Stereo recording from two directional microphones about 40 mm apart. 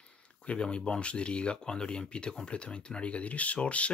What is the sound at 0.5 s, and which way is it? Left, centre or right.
Speech, left.